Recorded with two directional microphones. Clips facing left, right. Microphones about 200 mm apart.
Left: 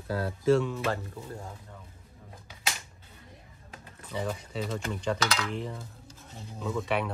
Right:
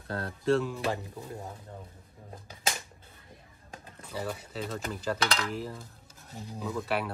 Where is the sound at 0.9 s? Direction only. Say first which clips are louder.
Left 1 dB; 20° right (ahead or behind).